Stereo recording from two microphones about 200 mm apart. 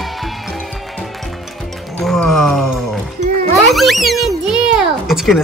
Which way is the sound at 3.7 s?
Centre (ahead or behind).